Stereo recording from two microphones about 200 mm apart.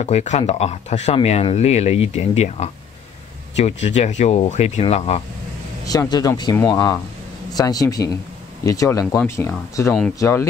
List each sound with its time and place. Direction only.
0.0 s speech: 35° left (ahead or behind)
5.9 s speech: 20° left (ahead or behind)